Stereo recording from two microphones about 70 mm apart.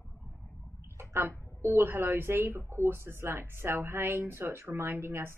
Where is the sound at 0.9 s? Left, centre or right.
Right.